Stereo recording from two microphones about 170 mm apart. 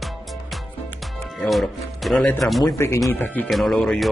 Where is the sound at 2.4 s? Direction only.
Centre (ahead or behind).